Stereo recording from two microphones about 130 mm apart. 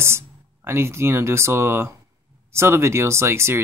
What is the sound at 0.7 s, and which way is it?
Speech, 20° right (ahead or behind).